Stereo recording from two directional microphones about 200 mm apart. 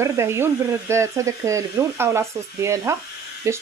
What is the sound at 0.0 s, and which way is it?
Speech, 15° right (ahead or behind).